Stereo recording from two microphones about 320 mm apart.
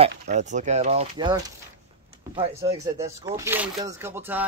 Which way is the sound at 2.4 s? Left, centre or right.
Centre.